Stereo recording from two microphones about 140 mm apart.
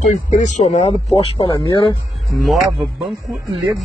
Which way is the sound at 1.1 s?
40° left (ahead or behind).